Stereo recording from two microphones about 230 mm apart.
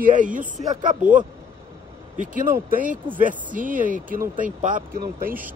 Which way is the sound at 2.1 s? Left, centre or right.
Right.